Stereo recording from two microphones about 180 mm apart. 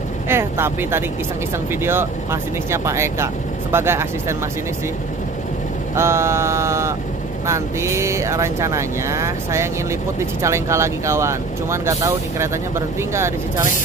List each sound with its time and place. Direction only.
0.3 s speech: 15° right (ahead or behind)
5.9 s speech: 15° right (ahead or behind)